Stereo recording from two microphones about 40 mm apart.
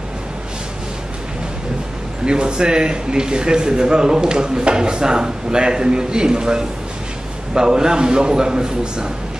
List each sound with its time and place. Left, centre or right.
2.2 s a man's voice: right